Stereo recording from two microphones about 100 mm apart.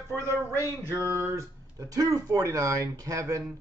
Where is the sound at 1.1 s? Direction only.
30° right (ahead or behind).